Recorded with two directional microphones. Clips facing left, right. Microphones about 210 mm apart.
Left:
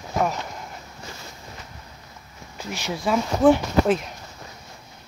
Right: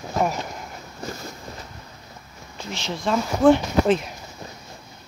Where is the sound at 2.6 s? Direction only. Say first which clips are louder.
Left 1 dB; 10° left (ahead or behind).